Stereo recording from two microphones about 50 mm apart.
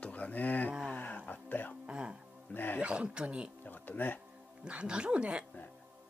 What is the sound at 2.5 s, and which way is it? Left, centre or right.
Speech, left.